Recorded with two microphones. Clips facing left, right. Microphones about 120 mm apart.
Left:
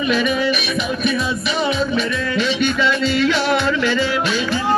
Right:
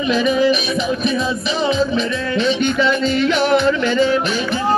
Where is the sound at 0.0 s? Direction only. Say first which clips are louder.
Right 3 dB; 30° right (ahead or behind).